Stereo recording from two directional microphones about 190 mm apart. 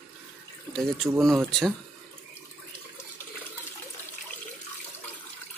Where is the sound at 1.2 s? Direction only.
Centre (ahead or behind).